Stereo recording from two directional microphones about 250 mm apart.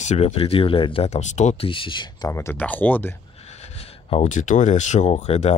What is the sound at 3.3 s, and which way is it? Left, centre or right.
Speech, left.